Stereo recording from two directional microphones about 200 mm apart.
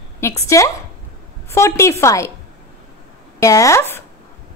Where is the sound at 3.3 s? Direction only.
15° left (ahead or behind).